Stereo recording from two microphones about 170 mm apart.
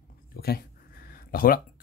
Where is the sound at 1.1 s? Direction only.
55° left (ahead or behind).